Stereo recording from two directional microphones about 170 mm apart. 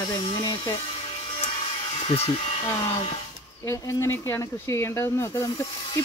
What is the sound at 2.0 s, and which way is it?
Speech, 35° left (ahead or behind).